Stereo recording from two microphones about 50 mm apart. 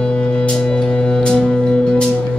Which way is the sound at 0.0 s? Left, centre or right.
Centre.